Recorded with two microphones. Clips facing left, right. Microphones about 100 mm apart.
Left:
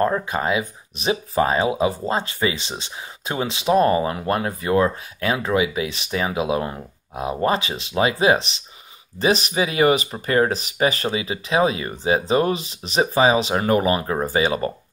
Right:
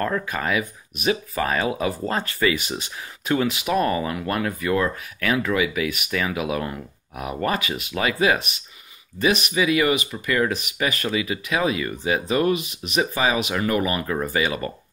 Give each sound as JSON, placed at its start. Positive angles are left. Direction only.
{"t": 0.0, "sound": "speech", "side_deg": 25}